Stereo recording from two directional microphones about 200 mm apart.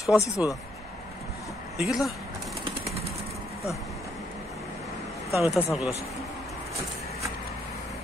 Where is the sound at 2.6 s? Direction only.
30° right (ahead or behind).